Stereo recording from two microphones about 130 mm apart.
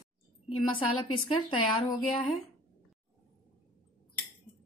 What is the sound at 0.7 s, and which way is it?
Speech, 40° left (ahead or behind).